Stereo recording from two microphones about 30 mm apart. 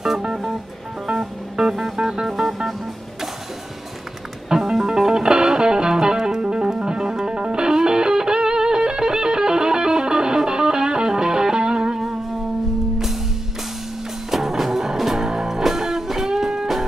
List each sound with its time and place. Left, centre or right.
0.3 s music: centre
4.5 s music: centre
14.3 s music: centre